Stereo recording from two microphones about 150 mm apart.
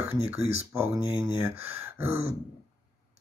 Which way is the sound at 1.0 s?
30° left (ahead or behind).